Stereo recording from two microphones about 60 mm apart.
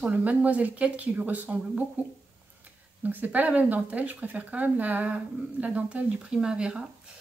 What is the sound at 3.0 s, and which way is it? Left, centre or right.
Speech, right.